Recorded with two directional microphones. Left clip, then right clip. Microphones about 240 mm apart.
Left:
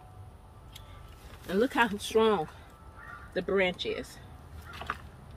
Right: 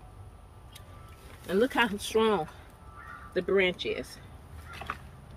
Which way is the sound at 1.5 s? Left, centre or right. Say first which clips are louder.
Right 1 dB; right.